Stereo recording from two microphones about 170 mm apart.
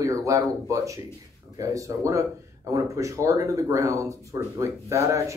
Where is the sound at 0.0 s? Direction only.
20° right (ahead or behind).